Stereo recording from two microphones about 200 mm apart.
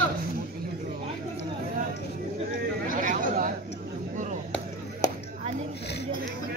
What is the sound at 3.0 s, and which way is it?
Chatter, 40° right (ahead or behind).